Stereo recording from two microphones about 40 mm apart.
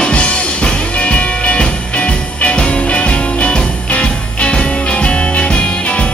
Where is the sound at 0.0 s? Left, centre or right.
Left.